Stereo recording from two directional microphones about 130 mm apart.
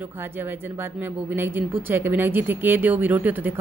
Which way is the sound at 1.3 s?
15° right (ahead or behind).